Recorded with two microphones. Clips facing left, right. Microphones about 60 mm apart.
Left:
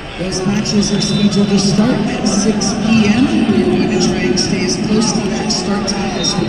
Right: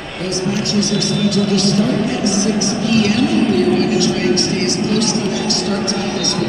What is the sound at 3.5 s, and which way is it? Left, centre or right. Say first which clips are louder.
Speech: left 1 dB; right.